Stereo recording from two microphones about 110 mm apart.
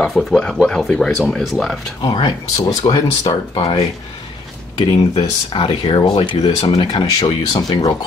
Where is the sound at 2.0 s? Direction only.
40° left (ahead or behind).